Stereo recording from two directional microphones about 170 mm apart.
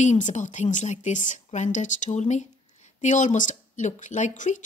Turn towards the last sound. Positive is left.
turn(degrees=45)  # may be behind; listen again after turning